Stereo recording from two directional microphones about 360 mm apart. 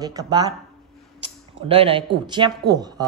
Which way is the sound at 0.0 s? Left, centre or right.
Centre.